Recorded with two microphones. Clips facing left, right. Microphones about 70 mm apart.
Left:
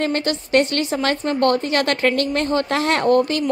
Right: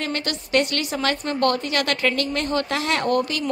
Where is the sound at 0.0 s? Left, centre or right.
Left.